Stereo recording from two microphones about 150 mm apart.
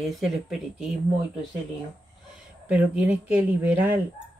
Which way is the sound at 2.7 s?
10° right (ahead or behind).